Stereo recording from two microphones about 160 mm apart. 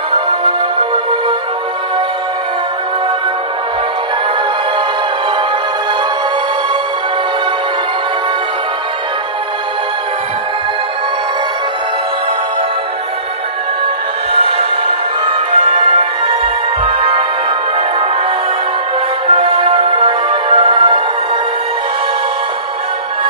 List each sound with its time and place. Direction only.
0.1 s music: 30° right (ahead or behind)
14.3 s music: 40° right (ahead or behind)
19.2 s music: 35° right (ahead or behind)